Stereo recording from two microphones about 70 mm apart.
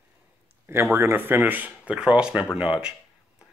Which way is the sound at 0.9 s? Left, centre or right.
Right.